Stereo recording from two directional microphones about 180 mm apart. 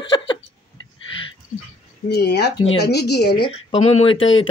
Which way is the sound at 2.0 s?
65° left (ahead or behind).